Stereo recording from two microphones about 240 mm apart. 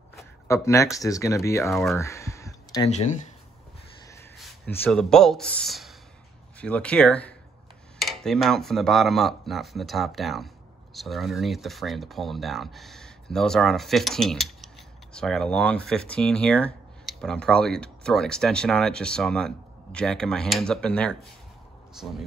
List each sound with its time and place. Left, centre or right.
0.5 s speech: centre
2.0 s a sound: centre
2.9 s speech: left
4.4 s speech: centre